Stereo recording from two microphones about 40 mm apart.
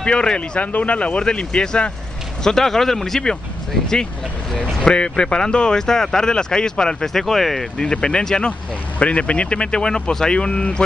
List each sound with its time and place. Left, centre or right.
0.0 s speech: left
0.6 s speech: left
2.4 s speech: centre
7.8 s speech: centre
9.0 s speech: left